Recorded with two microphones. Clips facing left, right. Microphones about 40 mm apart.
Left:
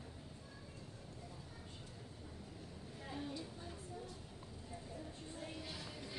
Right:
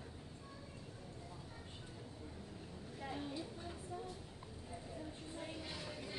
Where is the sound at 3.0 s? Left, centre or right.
Centre.